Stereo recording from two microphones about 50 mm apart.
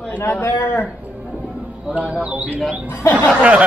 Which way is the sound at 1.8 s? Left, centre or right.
Right.